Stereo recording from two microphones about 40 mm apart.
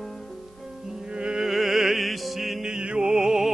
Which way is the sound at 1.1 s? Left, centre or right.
Right.